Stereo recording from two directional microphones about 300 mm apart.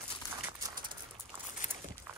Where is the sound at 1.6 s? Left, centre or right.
Left.